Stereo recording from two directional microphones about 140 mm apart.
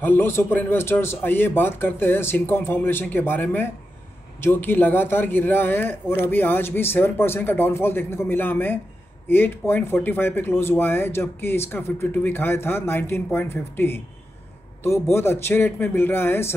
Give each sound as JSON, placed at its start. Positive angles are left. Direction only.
{"t": 0.0, "sound": "speech", "side_deg": 15}